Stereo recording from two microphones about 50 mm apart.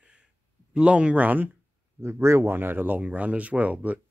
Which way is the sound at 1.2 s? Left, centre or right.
Right.